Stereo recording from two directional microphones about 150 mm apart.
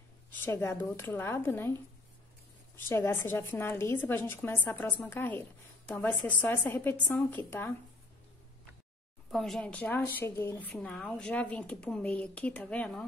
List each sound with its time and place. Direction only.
0.3 s a woman's voice: 15° left (ahead or behind)
2.9 s a woman's voice: 15° left (ahead or behind)
9.3 s a woman's voice: centre (ahead or behind)